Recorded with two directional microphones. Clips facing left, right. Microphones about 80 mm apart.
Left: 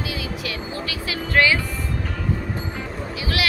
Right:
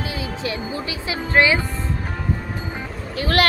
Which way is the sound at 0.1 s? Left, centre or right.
Right.